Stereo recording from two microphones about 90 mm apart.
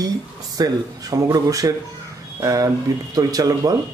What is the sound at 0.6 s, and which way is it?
Speech, 45° right (ahead or behind).